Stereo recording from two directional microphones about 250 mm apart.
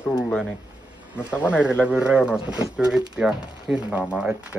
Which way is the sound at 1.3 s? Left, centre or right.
Centre.